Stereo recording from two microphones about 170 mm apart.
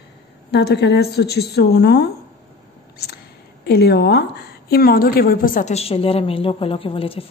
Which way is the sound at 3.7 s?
75° left (ahead or behind).